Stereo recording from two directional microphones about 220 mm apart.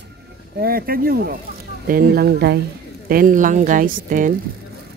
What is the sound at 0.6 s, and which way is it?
A woman's voice, 45° right (ahead or behind).